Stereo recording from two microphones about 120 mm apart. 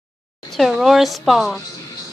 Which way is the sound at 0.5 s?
Centre (ahead or behind).